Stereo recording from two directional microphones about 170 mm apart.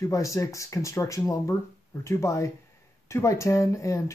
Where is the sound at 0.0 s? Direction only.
20° left (ahead or behind).